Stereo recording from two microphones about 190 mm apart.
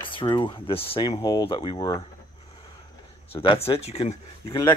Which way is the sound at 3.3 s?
30° left (ahead or behind).